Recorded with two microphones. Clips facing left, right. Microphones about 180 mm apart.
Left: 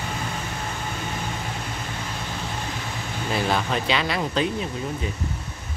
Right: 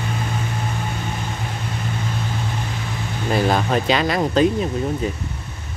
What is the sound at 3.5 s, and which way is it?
Speech, 45° right (ahead or behind).